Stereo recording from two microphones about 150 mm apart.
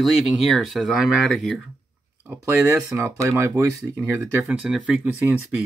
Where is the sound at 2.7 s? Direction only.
20° right (ahead or behind).